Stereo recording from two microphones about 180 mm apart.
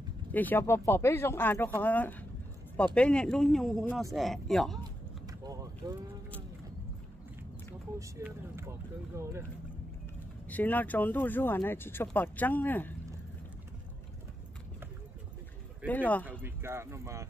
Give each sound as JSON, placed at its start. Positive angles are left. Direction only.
{"t": 0.3, "sound": "speech", "side_deg": 10}
{"t": 5.2, "sound": "vehicle", "side_deg": -20}
{"t": 8.0, "sound": "speech", "side_deg": -15}
{"t": 10.5, "sound": "speech", "side_deg": 10}
{"t": 15.9, "sound": "speech", "side_deg": 10}
{"t": 16.3, "sound": "speech", "side_deg": -10}